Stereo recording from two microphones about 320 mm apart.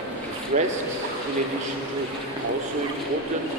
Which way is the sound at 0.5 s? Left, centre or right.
Right.